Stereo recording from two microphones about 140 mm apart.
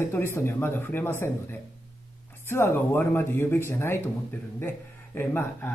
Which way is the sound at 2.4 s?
15° left (ahead or behind).